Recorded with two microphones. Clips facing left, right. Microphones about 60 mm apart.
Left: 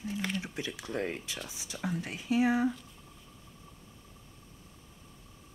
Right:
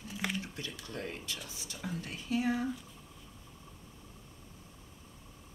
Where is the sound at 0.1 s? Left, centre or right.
Centre.